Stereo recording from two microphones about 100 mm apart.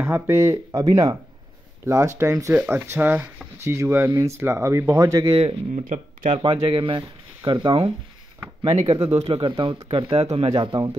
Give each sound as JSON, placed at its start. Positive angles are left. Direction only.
{"t": 0.0, "sound": "speech", "side_deg": -25}
{"t": 2.9, "sound": "speech", "side_deg": -20}
{"t": 5.3, "sound": "speech", "side_deg": -75}
{"t": 6.3, "sound": "speech", "side_deg": -60}
{"t": 8.6, "sound": "speech", "side_deg": -60}
{"t": 10.1, "sound": "speech", "side_deg": -75}